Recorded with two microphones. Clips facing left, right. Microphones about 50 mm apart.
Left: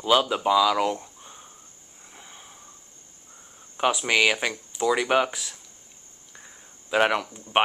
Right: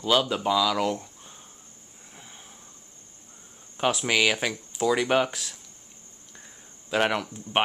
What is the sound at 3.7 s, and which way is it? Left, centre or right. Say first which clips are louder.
Speech: left 2 dB; centre.